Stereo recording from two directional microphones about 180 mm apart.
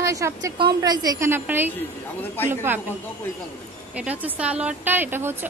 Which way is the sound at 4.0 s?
5° right (ahead or behind).